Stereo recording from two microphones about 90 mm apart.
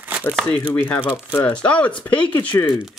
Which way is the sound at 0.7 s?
20° left (ahead or behind).